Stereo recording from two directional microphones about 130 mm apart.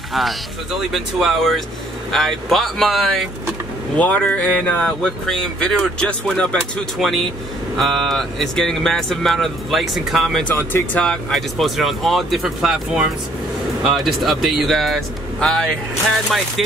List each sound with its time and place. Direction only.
0.9 s speech: centre (ahead or behind)
10.5 s speech: 15° left (ahead or behind)
11.0 s speech: 5° left (ahead or behind)